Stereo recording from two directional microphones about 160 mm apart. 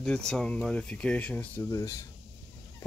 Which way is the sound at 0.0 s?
5° left (ahead or behind).